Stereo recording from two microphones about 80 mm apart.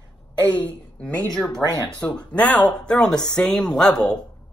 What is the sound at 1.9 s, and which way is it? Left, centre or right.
Speech, centre.